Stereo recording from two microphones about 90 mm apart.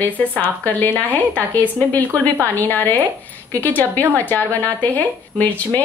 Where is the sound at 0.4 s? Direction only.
20° left (ahead or behind).